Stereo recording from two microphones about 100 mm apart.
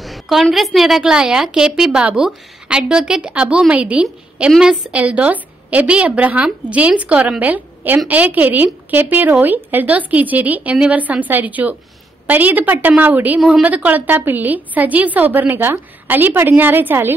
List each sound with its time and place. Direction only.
0.0 s a woman's voice: centre (ahead or behind); by 17.1 s 20° right (ahead or behind)